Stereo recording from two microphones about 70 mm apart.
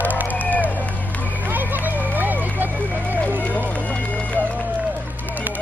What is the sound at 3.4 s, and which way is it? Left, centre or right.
Run, left.